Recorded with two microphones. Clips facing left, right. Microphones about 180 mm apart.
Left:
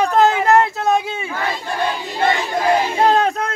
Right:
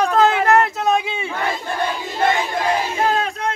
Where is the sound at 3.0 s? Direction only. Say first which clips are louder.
Left 5 dB; 40° left (ahead or behind).